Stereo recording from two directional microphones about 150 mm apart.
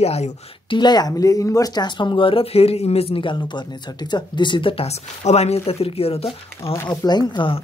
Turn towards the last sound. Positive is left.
turn(degrees=35)  # may be behind; listen again after turning